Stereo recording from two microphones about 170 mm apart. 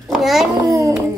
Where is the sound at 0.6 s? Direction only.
20° right (ahead or behind).